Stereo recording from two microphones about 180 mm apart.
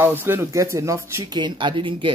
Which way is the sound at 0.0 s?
10° right (ahead or behind).